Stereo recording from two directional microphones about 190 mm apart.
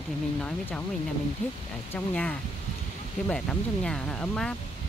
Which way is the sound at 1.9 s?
5° left (ahead or behind).